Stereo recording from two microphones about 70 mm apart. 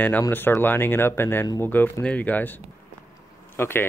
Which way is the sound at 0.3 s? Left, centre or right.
Left.